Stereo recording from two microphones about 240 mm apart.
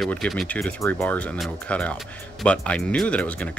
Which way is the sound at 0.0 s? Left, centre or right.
Centre.